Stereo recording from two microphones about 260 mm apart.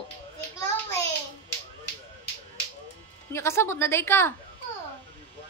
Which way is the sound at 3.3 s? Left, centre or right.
Centre.